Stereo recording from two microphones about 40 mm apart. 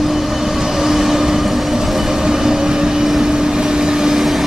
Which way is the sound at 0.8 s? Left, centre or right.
Centre.